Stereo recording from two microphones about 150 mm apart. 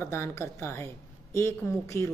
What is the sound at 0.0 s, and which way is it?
A woman's voice, 15° left (ahead or behind).